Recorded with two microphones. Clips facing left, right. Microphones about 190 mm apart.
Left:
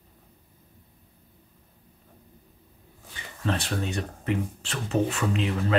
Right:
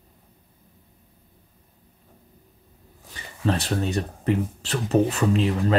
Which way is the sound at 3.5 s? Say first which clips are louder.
Right 4 dB; 40° right (ahead or behind).